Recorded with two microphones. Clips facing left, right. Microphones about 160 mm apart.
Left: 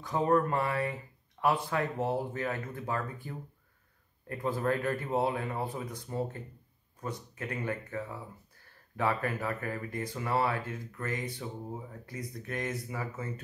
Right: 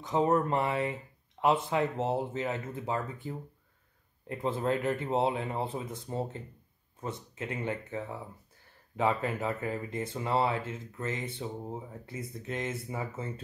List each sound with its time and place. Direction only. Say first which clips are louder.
0.0 s speech: right 1 dB; 20° right (ahead or behind)